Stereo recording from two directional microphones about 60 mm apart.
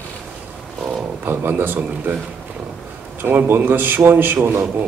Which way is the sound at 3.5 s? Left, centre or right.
Right.